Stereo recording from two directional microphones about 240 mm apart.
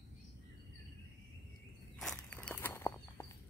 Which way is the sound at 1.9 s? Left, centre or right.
Centre.